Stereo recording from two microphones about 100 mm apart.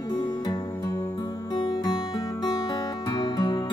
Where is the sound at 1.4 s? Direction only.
50° left (ahead or behind).